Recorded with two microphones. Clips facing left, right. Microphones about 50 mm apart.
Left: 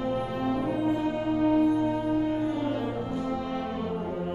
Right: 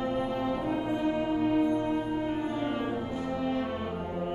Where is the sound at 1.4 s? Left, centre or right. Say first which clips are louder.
Left 6 dB; centre.